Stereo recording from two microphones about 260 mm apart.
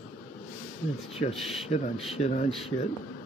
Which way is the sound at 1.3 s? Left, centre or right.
Centre.